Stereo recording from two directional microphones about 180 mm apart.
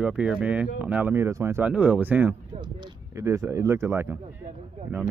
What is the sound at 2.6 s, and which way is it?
Speech, 20° right (ahead or behind).